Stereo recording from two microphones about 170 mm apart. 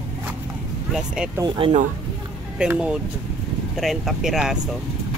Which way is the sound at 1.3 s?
25° right (ahead or behind).